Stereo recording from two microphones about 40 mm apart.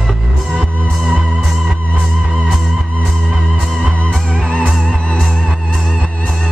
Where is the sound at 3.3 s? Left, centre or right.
Right.